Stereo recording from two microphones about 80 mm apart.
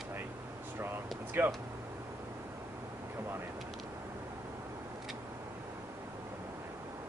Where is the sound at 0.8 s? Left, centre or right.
Right.